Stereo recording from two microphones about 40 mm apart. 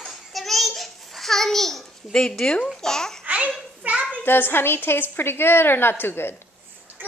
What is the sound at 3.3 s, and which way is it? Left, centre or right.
Children playing, right.